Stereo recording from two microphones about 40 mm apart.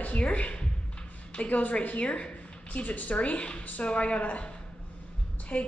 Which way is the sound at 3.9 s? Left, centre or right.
Left.